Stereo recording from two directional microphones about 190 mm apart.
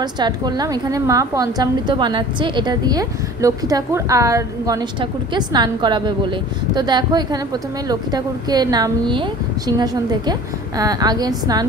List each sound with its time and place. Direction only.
0.0 s a woman's voice: 20° right (ahead or behind)